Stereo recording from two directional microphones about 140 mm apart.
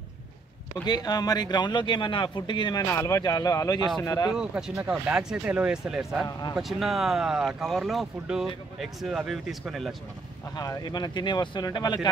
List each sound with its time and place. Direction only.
0.8 s speech: 30° left (ahead or behind)
4.3 s speech: 5° right (ahead or behind)
10.5 s speech: 25° left (ahead or behind)